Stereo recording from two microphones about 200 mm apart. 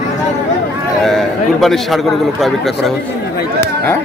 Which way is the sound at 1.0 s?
Centre (ahead or behind).